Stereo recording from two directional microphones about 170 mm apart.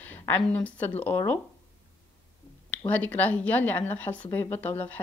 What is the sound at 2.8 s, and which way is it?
A woman's voice, 10° left (ahead or behind).